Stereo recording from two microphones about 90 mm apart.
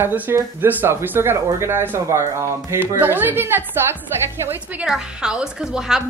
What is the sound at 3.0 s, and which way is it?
Speech, 20° right (ahead or behind).